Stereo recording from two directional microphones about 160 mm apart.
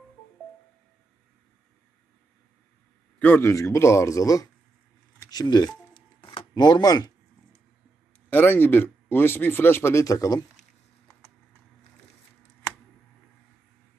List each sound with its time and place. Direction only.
3.2 s a man's voice: 10° left (ahead or behind)
5.3 s telephone dialing: 25° left (ahead or behind)
8.3 s speech: 10° left (ahead or behind)